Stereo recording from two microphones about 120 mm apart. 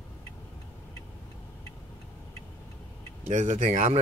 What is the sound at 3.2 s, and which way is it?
Speech, 85° right.